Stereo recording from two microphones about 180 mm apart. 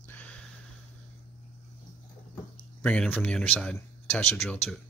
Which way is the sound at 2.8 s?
5° left (ahead or behind).